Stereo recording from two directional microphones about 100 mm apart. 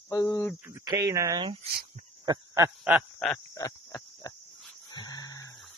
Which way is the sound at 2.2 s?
40° right (ahead or behind).